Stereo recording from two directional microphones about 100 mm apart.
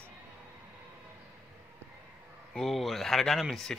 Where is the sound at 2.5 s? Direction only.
Centre (ahead or behind).